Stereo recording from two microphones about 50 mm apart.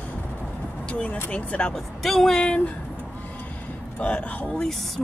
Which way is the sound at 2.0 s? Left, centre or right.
Centre.